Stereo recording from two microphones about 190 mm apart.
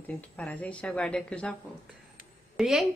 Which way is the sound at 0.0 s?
10° left (ahead or behind).